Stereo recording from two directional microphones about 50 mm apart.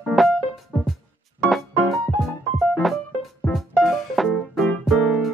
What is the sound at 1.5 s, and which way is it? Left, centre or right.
Music, centre.